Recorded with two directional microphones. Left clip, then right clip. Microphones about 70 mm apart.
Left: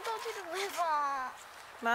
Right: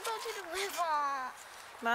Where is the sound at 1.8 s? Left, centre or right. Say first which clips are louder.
Left 1 dB; centre.